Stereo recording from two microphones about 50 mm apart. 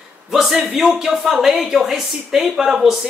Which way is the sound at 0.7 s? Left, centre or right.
Centre.